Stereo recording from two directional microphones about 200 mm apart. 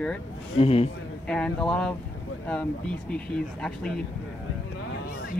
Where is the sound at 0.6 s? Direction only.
30° left (ahead or behind).